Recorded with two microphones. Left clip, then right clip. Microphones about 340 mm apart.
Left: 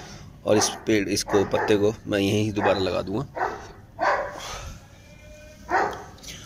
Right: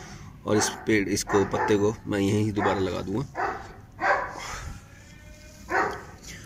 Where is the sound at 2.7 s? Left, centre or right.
Left.